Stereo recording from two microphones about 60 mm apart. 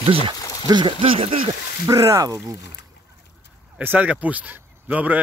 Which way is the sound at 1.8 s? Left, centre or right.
Right.